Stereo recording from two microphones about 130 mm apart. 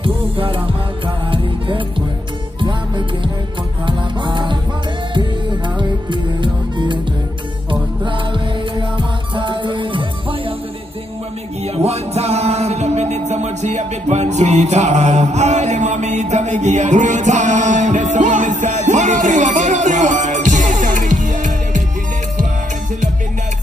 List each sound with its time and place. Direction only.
0.0 s music: 45° right (ahead or behind)
5.8 s music: 35° right (ahead or behind)
8.0 s music: 40° right (ahead or behind)
11.6 s music: 55° right (ahead or behind); by 21.8 s 75° right (ahead or behind)